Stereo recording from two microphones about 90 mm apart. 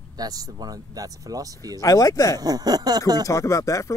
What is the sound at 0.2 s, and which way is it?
Speech, 45° right (ahead or behind).